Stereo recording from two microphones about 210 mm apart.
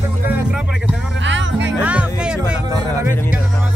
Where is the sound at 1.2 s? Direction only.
60° right (ahead or behind).